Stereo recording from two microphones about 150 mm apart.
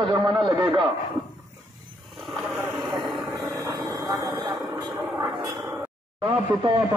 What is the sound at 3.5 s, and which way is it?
Vehicle, 25° right (ahead or behind).